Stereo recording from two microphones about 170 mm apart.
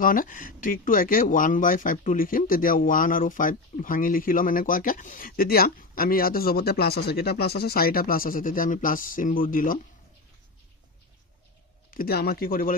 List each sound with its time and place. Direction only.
0.0 s speech: 55° left (ahead or behind)
11.9 s speech: 60° left (ahead or behind)